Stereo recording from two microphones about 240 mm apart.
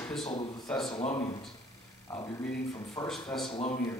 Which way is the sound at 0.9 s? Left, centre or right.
Left.